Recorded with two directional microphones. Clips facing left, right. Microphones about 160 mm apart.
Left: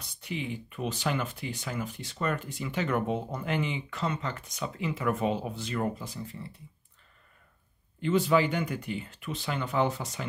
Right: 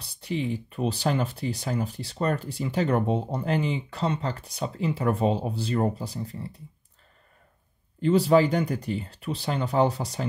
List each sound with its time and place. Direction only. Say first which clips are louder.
0.0 s speech: right 6 dB; 35° right (ahead or behind)
8.0 s speech: right 5 dB; 35° right (ahead or behind)